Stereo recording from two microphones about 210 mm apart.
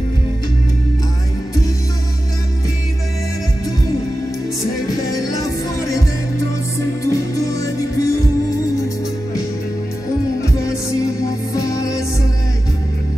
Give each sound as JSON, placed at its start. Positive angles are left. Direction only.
{"t": 4.8, "sound": "music", "side_deg": 15}
{"t": 7.1, "sound": "music", "side_deg": 15}
{"t": 11.5, "sound": "music", "side_deg": 15}